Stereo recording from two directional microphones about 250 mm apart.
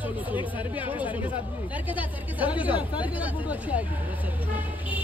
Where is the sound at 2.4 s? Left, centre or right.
Centre.